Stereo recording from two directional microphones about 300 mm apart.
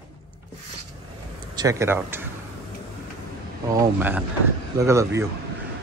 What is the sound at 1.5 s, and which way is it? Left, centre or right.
Speech, centre.